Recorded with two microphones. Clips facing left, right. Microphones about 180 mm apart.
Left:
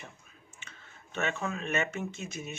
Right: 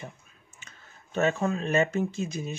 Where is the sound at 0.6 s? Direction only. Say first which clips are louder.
Right 1 dB; 40° right (ahead or behind).